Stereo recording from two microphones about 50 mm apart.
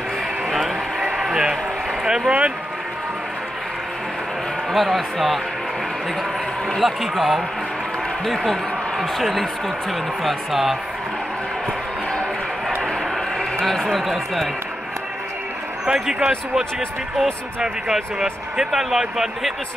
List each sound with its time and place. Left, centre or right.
1.1 s a sound: centre
2.0 s speech: centre
4.7 s speech: centre
6.8 s speech: centre
13.4 s a sound: centre
13.9 s speech: centre
15.8 s a man's voice: centre